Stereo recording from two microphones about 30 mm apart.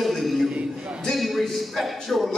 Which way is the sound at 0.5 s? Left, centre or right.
Right.